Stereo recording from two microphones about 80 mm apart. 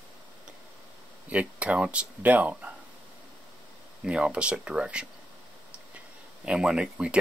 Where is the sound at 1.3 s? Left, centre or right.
Centre.